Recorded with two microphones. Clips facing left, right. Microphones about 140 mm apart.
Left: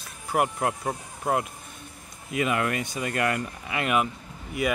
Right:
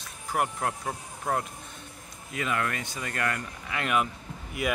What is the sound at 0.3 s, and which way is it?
Speech, 10° left (ahead or behind).